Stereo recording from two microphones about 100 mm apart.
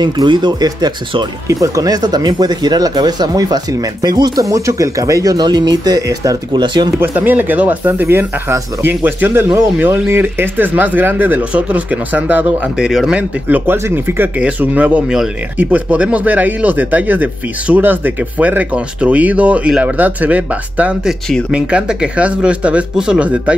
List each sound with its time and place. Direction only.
0.0 s speech: 50° right (ahead or behind)
6.5 s speech: 50° right (ahead or behind)
7.0 s speech: 20° right (ahead or behind)
13.5 s speech: 20° right (ahead or behind)